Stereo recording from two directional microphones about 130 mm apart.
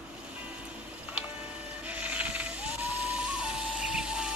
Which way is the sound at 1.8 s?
10° right (ahead or behind).